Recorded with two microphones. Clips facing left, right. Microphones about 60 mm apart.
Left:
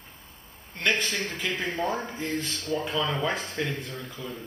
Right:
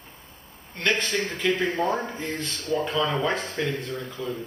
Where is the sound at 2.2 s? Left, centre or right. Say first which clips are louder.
Even; centre.